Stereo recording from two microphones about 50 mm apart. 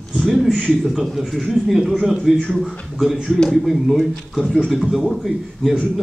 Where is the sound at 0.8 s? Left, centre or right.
Centre.